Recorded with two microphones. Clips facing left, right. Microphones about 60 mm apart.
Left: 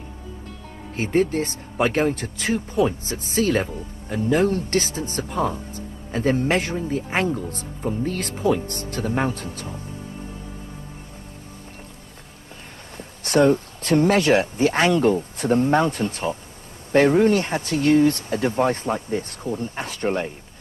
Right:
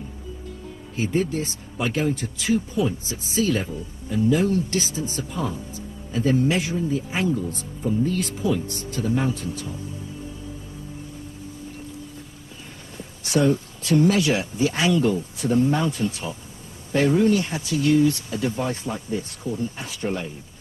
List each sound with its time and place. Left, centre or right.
0.9 s speech: left
12.9 s speech: left